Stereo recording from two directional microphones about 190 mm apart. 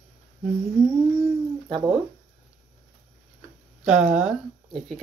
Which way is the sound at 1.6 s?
20° right (ahead or behind).